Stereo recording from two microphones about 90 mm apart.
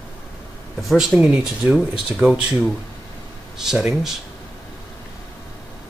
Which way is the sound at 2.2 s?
20° right (ahead or behind).